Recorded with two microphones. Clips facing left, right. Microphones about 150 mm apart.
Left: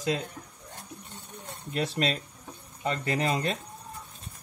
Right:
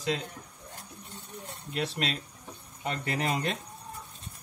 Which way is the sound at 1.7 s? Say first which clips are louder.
Left 4 dB; 40° left (ahead or behind).